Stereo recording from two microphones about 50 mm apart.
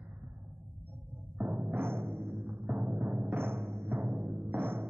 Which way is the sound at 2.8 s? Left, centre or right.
Right.